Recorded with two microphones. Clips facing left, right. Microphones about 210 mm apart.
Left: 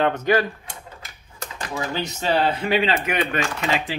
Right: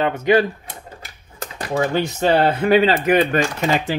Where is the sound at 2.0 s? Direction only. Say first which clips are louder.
Right 4 dB; 50° right (ahead or behind).